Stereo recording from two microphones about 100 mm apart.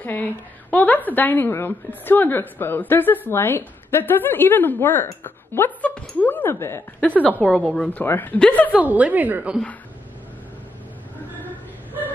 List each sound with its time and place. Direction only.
0.7 s a woman's voice: 15° left (ahead or behind)
7.2 s a woman's voice: 10° left (ahead or behind)
8.7 s a woman's voice: 15° right (ahead or behind)